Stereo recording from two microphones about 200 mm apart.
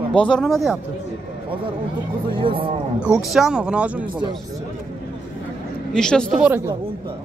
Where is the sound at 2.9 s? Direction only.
5° right (ahead or behind).